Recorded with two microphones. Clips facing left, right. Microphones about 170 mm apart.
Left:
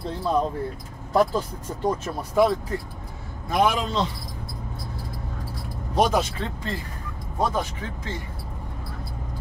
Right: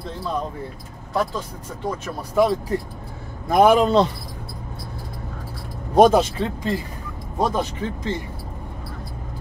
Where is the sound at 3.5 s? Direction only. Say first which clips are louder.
Right 8 dB; 50° right (ahead or behind).